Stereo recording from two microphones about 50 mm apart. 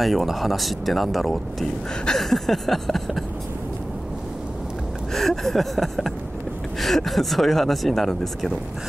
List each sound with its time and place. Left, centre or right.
0.0 s speech: centre
5.1 s speech: centre